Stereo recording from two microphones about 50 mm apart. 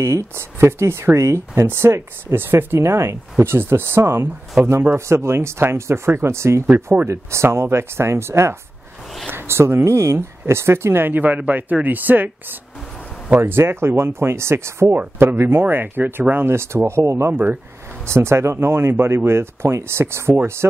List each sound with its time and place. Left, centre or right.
0.0 s speech: right
1.5 s speech: right
2.8 s speech: right
4.0 s speech: right
4.6 s a man's voice: right
4.9 s speech: right
7.4 s speech: right
9.8 s speech: right
13.4 s speech: right
15.1 s speech: right
16.5 s speech: right